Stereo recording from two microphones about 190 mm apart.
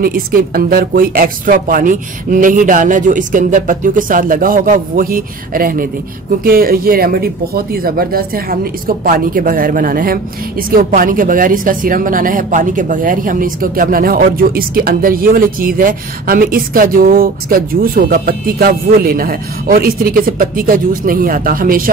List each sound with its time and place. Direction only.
0.0 s a woman's voice: 50° right (ahead or behind)